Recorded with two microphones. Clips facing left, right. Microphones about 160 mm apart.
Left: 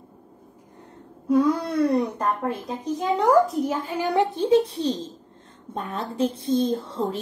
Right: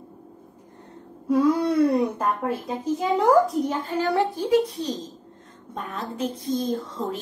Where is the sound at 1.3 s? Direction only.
Centre (ahead or behind).